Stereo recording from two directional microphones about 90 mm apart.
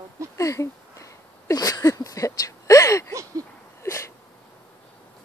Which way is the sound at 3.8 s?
35° left (ahead or behind).